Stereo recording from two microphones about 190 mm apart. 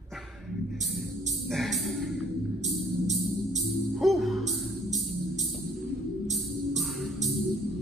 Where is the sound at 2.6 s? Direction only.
35° right (ahead or behind).